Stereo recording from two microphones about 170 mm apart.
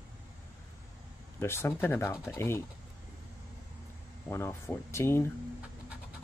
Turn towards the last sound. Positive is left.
turn(degrees=15)  # may be behind; listen again after turning